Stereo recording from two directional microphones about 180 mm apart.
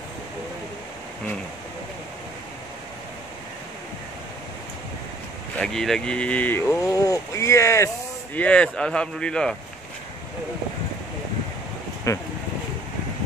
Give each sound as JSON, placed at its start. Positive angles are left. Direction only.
{"t": 5.6, "sound": "speech", "side_deg": 5}
{"t": 12.1, "sound": "speech", "side_deg": 15}